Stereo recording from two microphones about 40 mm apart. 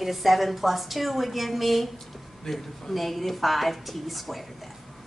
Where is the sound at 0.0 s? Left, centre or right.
Centre.